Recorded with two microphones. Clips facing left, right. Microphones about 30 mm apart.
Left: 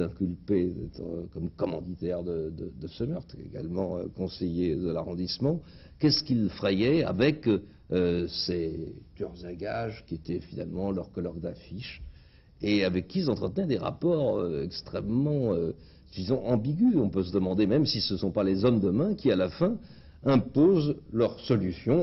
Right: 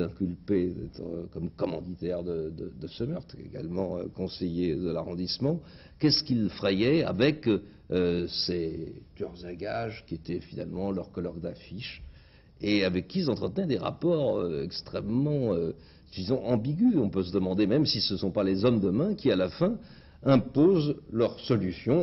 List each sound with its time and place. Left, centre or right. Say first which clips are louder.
0.0 s a man's voice: left 1 dB; centre
15.6 s speech: even; centre
16.3 s a man's voice: even; centre